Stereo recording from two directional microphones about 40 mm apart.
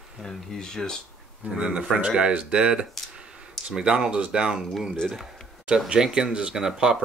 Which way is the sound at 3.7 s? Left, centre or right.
Centre.